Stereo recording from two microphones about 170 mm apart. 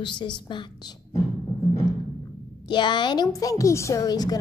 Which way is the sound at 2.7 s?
25° left (ahead or behind).